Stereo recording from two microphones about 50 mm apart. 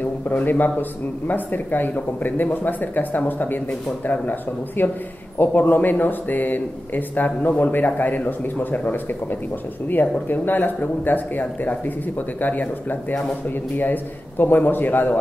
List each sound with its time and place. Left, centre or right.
0.0 s a man's voice: left
14.4 s speech: left